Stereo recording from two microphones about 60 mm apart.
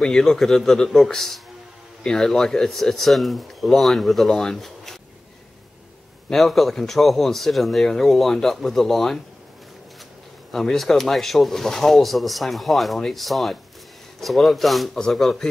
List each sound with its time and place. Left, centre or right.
0.0 s a man's voice: centre
6.3 s speech: centre
10.5 s a man's voice: centre